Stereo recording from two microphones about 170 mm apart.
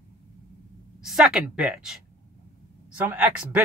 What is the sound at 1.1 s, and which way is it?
Speech, centre (ahead or behind).